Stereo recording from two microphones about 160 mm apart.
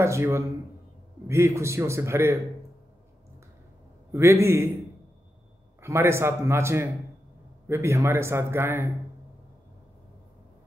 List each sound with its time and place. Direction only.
0.0 s a man's voice: 15° right (ahead or behind)
4.1 s a man's voice: 15° right (ahead or behind)
5.8 s a man's voice: 15° right (ahead or behind)